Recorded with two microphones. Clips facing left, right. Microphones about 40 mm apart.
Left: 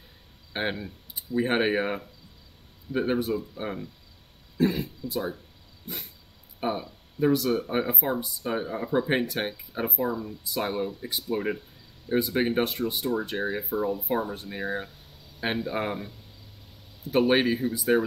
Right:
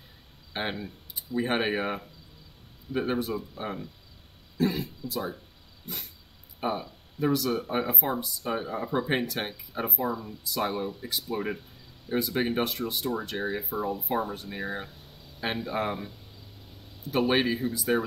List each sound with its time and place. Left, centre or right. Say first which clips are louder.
0.5 s speech: left 2 dB; centre
6.6 s speech: left 1 dB; centre
17.1 s speech: left 3 dB; centre